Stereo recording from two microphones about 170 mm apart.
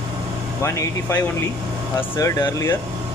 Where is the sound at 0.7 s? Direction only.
15° left (ahead or behind).